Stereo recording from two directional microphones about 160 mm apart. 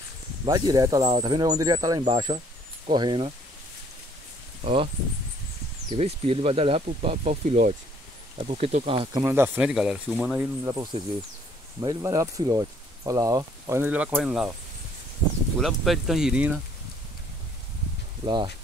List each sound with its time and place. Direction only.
0.5 s speech: 25° right (ahead or behind)
5.9 s speech: 40° right (ahead or behind)
8.4 s speech: 40° right (ahead or behind)
9.2 s speech: 15° right (ahead or behind)
10.6 s speech: 25° right (ahead or behind); by 14.5 s 5° right (ahead or behind)
15.6 s speech: centre (ahead or behind)
18.2 s speech: 30° right (ahead or behind)